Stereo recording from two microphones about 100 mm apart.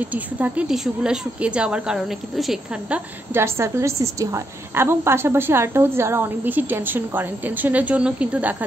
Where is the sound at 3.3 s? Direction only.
25° right (ahead or behind).